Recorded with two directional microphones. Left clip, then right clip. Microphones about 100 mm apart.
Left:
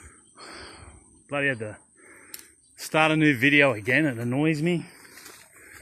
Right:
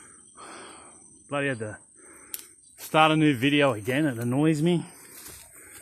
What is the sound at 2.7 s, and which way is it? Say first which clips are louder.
Speech: right 1 dB; 20° right (ahead or behind).